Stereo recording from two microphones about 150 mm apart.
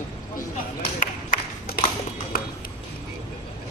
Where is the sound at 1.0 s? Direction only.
75° left (ahead or behind).